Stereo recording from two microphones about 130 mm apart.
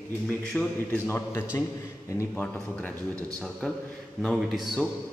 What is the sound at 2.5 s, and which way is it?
A man's voice, 10° left (ahead or behind).